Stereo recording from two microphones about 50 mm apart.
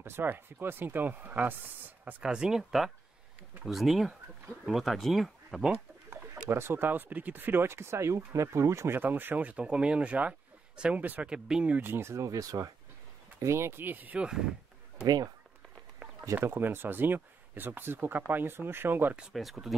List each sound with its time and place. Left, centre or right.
0.0 s speech: right
2.2 s speech: centre
6.5 s speech: right
8.9 s speech: right
11.2 s speech: centre
11.8 s speech: right
12.1 s speech: right
13.4 s speech: right
14.1 s speech: centre
16.4 s speech: right
19.3 s speech: centre